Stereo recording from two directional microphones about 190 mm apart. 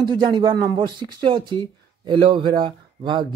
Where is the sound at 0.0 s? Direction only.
25° right (ahead or behind).